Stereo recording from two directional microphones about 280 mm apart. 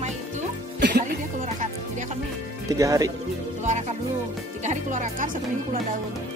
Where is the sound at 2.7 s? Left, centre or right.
Centre.